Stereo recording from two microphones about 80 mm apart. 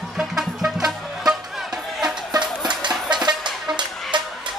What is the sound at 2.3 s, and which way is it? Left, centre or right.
Music, right.